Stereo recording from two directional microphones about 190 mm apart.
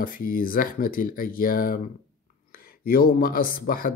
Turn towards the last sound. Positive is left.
turn(degrees=50)  # may be behind; listen again after turning